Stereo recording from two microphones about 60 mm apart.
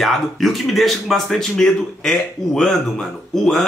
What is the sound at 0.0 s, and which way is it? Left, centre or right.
Speech, centre.